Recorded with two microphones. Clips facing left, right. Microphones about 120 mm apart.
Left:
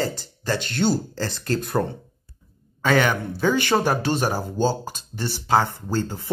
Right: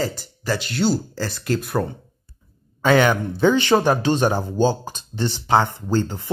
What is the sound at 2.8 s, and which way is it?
Speech, centre (ahead or behind).